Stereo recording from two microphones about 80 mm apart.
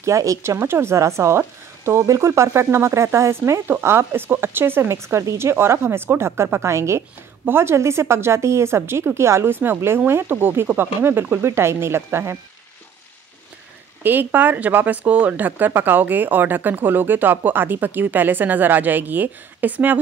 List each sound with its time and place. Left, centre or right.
0.0 s speech: right
14.0 s speech: right